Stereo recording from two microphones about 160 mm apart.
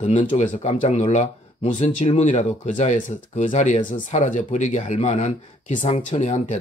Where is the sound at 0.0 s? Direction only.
50° left (ahead or behind).